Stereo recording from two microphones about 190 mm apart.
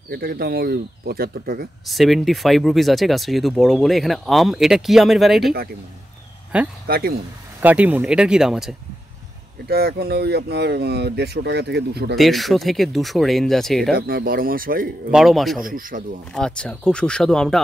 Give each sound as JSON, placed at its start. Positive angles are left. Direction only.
{"t": 0.1, "sound": "speech", "side_deg": -55}
{"t": 1.9, "sound": "speech", "side_deg": 0}
{"t": 6.5, "sound": "speech", "side_deg": -5}
{"t": 6.9, "sound": "speech", "side_deg": -55}
{"t": 7.6, "sound": "speech", "side_deg": -10}
{"t": 9.7, "sound": "speech", "side_deg": -55}
{"t": 12.2, "sound": "speech", "side_deg": 0}
{"t": 13.9, "sound": "speech", "side_deg": -50}
{"t": 15.0, "sound": "speech", "side_deg": 0}
{"t": 15.6, "sound": "speech", "side_deg": -45}
{"t": 16.3, "sound": "speech", "side_deg": 5}